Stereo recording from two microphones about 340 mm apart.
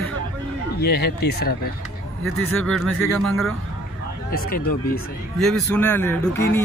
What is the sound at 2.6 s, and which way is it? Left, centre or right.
Speech, centre.